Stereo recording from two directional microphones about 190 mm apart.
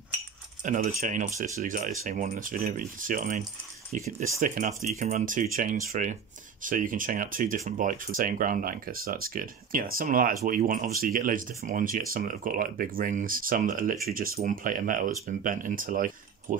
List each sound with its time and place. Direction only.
0.7 s speech: 45° right (ahead or behind)